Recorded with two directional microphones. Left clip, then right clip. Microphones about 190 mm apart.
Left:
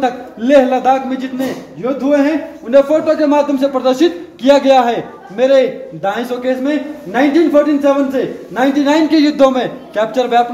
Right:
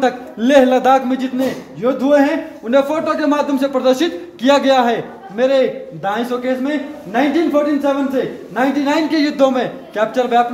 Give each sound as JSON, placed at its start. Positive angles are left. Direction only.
{"t": 0.0, "sound": "a man's voice", "side_deg": -50}
{"t": 2.7, "sound": "a man's voice", "side_deg": -40}